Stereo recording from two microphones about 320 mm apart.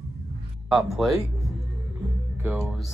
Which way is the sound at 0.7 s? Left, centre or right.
Centre.